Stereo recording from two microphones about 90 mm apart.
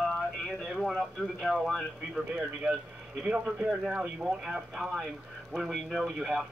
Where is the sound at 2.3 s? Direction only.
15° right (ahead or behind).